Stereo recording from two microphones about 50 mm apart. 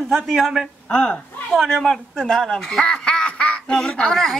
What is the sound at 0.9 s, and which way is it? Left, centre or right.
Speech, centre.